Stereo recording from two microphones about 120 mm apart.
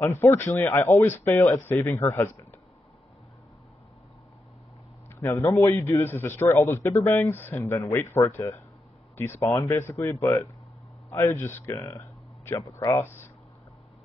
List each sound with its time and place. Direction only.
0.0 s a man's voice: 20° left (ahead or behind)
5.2 s a man's voice: 20° left (ahead or behind)